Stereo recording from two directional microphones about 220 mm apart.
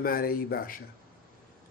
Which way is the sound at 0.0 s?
40° left (ahead or behind).